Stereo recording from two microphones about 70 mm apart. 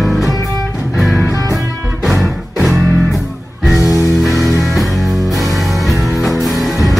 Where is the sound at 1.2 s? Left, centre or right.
Left.